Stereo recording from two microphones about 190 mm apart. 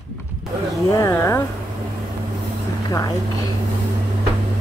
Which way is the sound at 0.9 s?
15° left (ahead or behind).